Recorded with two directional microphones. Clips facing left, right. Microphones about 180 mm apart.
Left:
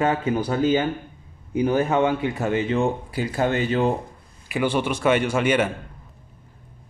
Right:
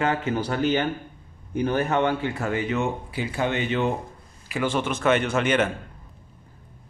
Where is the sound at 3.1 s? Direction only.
40° left (ahead or behind).